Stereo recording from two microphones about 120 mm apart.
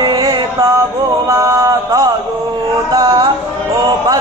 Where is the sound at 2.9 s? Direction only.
45° right (ahead or behind).